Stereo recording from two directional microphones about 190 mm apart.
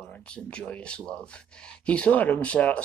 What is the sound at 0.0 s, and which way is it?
Speech, 5° left (ahead or behind).